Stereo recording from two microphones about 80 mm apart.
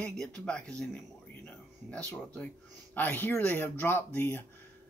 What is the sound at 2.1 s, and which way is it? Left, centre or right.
Speech, centre.